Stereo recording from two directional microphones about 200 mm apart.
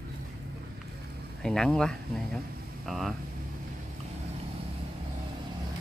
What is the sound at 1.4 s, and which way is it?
Speech, 5° left (ahead or behind).